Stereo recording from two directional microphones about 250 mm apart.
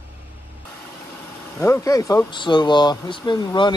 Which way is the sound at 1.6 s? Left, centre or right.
Centre.